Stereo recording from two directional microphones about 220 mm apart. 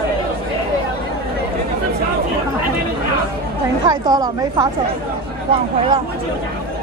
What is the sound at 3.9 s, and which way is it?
Speech, 15° right (ahead or behind).